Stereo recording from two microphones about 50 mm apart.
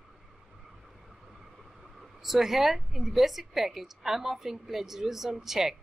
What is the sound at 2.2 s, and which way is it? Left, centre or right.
A woman's voice, centre.